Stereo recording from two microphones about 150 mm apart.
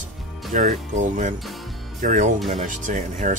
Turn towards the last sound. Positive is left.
turn(degrees=-55)  # may be behind; listen again after turning